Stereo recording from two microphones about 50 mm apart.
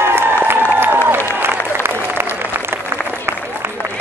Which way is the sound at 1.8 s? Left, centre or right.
Right.